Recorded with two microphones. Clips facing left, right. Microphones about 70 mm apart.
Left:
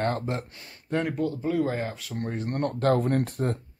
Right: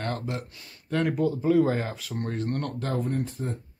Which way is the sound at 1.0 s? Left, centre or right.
Centre.